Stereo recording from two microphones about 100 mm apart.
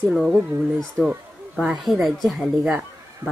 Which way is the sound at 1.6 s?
5° right (ahead or behind).